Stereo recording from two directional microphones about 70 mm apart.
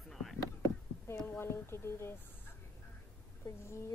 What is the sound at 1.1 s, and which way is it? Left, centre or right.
Speech, left.